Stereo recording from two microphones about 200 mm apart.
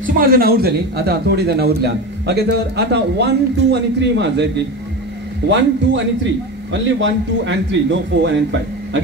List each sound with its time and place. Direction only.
0.0 s a man's voice: 45° right (ahead or behind)
5.5 s a man's voice: 65° right (ahead or behind)